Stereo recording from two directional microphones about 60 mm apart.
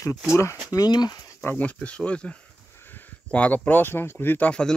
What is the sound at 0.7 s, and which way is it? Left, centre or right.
Speech, left.